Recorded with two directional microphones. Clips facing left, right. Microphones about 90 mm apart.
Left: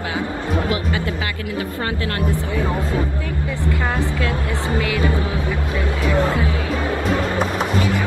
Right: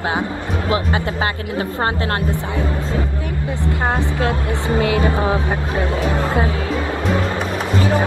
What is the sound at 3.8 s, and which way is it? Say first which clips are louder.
Speech: right 5 dB; 25° right (ahead or behind).